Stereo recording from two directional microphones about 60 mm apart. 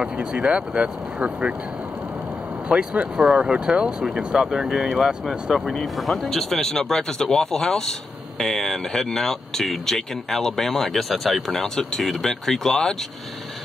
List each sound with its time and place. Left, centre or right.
0.0 s speech: centre
2.7 s speech: right; by 12.9 s centre